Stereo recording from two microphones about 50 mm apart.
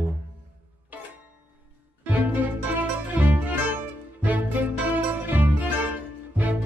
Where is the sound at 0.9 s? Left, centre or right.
Right.